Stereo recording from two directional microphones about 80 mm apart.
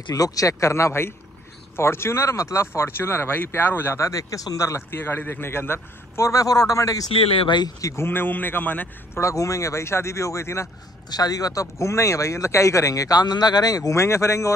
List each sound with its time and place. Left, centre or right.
0.1 s a man's voice: left
4.9 s a man's voice: left
7.3 s speech: left
7.8 s a man's voice: left
9.2 s a man's voice: left
11.1 s speech: left
13.9 s a man's voice: left